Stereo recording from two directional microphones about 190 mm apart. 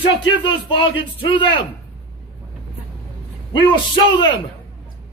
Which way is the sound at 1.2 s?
25° left (ahead or behind).